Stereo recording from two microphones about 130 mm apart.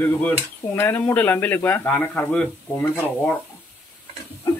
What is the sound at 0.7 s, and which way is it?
Speech, 15° left (ahead or behind).